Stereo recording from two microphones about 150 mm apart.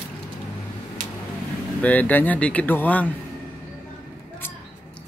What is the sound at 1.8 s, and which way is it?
Speech, 10° left (ahead or behind).